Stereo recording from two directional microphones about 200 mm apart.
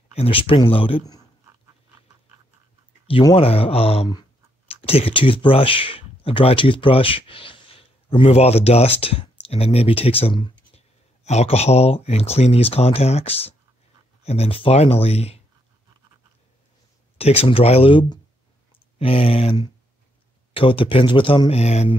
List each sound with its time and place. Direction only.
0.1 s speech: 30° left (ahead or behind)
3.1 s speech: 25° left (ahead or behind)
17.2 s speech: 30° left (ahead or behind)